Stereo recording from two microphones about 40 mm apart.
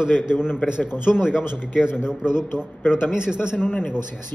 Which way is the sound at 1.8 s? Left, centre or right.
Left.